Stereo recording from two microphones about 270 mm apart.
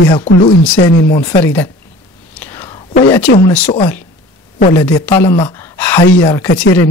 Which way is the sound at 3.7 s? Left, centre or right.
Centre.